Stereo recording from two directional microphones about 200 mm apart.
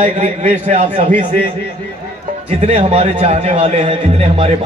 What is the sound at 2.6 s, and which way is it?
A man's voice, 35° right (ahead or behind).